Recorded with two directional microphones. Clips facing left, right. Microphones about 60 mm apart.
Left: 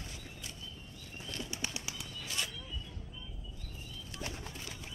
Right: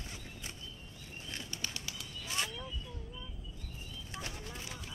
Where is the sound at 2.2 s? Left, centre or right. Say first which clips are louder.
Right 3 dB; right.